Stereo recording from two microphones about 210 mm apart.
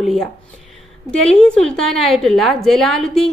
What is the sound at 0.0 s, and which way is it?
Speech, centre (ahead or behind).